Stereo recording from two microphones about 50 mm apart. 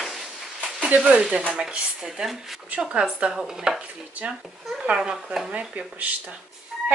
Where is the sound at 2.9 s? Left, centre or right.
Right.